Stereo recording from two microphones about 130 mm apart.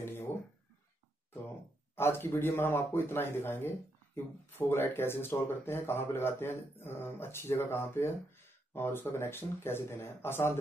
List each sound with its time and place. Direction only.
2.0 s speech: 20° left (ahead or behind)